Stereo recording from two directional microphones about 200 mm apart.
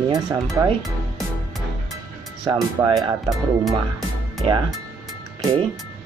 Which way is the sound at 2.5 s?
25° right (ahead or behind).